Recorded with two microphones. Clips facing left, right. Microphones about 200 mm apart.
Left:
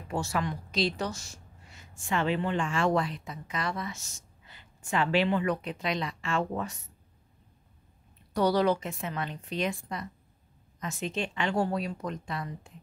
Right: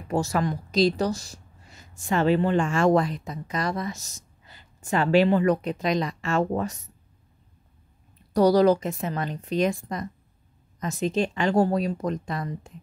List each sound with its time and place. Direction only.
0.1 s a woman's voice: 40° right (ahead or behind)
8.3 s a woman's voice: 40° right (ahead or behind)